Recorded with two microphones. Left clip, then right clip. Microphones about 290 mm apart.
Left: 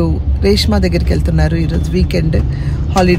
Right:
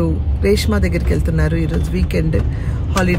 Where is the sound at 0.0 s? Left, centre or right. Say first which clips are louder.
Left 3 dB; centre.